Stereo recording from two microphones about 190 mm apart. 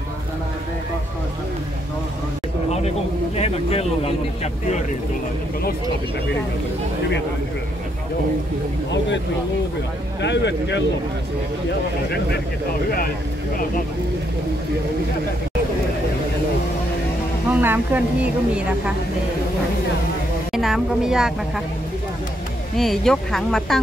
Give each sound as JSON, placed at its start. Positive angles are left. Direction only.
{"t": 3.3, "sound": "speech", "side_deg": 35}
{"t": 10.2, "sound": "speech", "side_deg": 65}
{"t": 17.5, "sound": "speech", "side_deg": -10}
{"t": 20.5, "sound": "a woman's voice", "side_deg": 0}
{"t": 22.8, "sound": "a woman's voice", "side_deg": 0}